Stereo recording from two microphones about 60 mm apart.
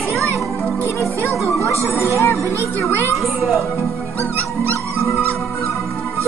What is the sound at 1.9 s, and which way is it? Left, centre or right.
Music, left.